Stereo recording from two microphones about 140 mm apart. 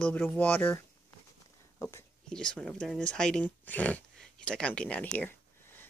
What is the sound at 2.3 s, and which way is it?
Speech, 5° left (ahead or behind).